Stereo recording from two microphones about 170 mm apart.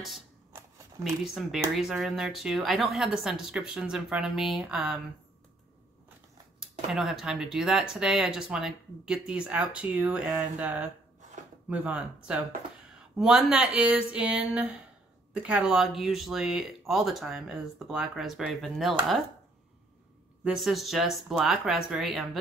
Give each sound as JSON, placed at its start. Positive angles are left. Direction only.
{"t": 0.5, "sound": "a sound", "side_deg": -15}
{"t": 1.0, "sound": "speech", "side_deg": 0}
{"t": 6.9, "sound": "speech", "side_deg": 0}
{"t": 20.4, "sound": "speech", "side_deg": 0}